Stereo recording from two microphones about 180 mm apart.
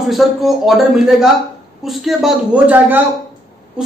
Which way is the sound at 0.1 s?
Centre (ahead or behind).